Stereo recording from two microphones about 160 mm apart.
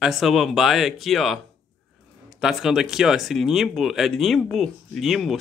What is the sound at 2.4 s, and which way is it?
Speech, centre (ahead or behind).